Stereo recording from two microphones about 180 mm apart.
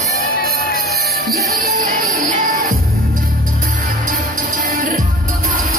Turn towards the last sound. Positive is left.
turn(degrees=-55)  # may be behind; listen again after turning